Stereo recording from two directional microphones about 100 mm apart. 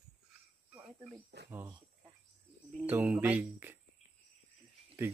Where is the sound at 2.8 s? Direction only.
15° right (ahead or behind).